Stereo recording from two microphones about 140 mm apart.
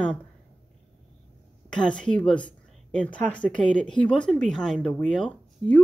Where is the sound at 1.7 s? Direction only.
5° left (ahead or behind).